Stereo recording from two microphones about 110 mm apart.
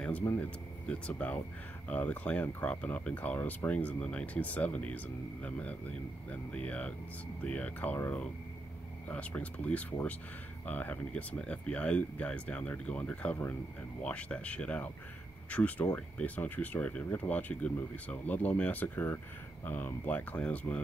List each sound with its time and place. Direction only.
0.2 s speech: 25° left (ahead or behind)
0.8 s speech: 10° left (ahead or behind)